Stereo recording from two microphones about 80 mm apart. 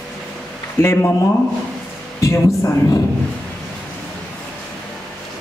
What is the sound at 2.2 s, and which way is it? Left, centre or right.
Speech, left.